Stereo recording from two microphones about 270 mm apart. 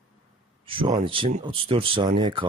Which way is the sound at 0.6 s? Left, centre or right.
Centre.